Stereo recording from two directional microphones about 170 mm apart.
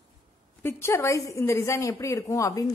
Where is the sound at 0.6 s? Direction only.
15° left (ahead or behind).